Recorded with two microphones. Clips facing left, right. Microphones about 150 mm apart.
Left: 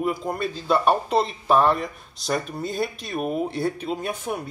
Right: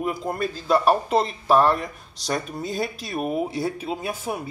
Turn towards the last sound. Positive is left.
turn(degrees=-5)  # may be behind; listen again after turning